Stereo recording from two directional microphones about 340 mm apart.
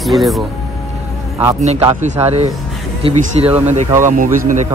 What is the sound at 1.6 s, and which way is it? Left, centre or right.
Speech, centre.